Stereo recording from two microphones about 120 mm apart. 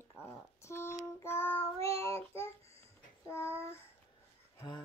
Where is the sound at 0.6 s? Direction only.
20° left (ahead or behind).